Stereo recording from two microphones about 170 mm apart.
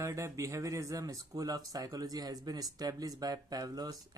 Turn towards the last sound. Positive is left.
turn(degrees=-20)  # may be behind; listen again after turning